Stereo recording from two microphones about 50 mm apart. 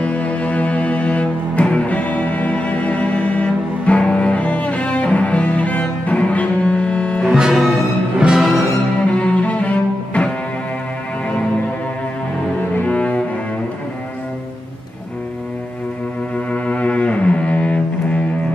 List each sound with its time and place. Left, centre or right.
0.0 s music: left
7.2 s music: centre
9.0 s cello: left
12.8 s cello: left
16.5 s cello: left